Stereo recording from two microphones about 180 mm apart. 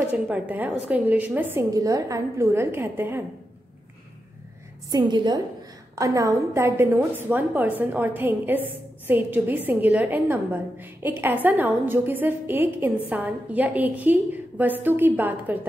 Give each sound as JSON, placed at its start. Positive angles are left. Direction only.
{"t": 0.1, "sound": "a woman's voice", "side_deg": -10}
{"t": 4.9, "sound": "a woman's voice", "side_deg": -25}